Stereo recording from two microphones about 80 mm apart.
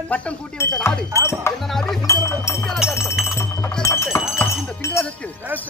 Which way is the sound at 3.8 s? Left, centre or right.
Left.